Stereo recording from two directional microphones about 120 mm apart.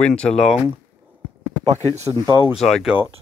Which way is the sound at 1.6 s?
65° right (ahead or behind).